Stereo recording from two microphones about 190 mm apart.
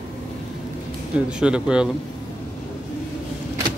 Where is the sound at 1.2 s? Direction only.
5° right (ahead or behind).